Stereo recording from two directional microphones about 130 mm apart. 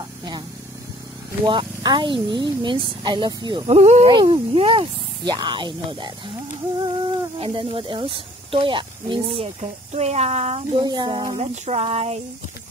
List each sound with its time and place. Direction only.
1.4 s speech: 35° right (ahead or behind)
3.6 s speech: 60° right (ahead or behind)
4.0 s speech: 40° right (ahead or behind)
9.6 s speech: 55° right (ahead or behind)
10.8 s speech: 35° right (ahead or behind)
11.3 s a sound: 55° right (ahead or behind)